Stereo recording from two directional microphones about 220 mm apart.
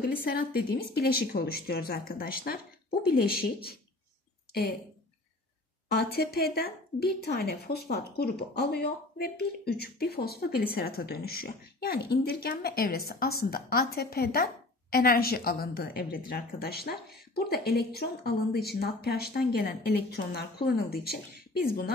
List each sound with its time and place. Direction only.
0.0 s a woman's voice: 40° left (ahead or behind)
5.9 s a woman's voice: 45° left (ahead or behind)